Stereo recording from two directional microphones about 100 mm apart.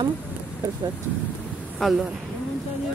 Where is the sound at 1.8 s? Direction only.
Centre (ahead or behind).